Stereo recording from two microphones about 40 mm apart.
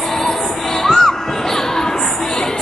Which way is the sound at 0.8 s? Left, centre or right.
Centre.